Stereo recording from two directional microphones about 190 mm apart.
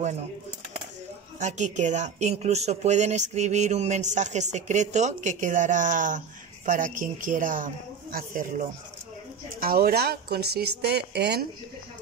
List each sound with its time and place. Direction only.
1.4 s speech: 40° right (ahead or behind); by 11.4 s 60° right (ahead or behind)